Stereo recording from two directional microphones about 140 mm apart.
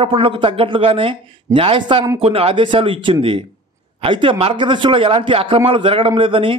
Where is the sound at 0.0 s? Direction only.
40° right (ahead or behind).